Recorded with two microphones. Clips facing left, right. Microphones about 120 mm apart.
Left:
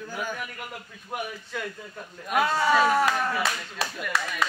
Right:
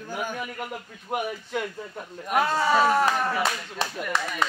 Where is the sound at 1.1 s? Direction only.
50° right (ahead or behind).